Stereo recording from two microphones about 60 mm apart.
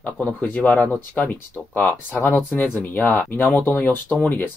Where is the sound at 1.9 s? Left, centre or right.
Left.